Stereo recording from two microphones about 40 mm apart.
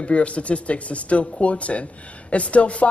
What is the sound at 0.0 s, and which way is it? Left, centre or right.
A woman's voice, left.